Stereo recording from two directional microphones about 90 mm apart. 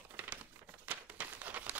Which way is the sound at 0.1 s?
20° right (ahead or behind).